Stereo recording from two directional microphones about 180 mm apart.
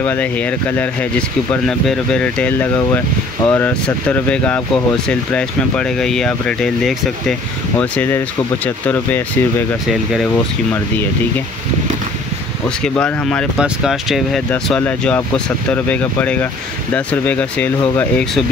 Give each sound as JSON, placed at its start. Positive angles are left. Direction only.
{"t": 0.0, "sound": "speech", "side_deg": 10}
{"t": 12.6, "sound": "speech", "side_deg": 5}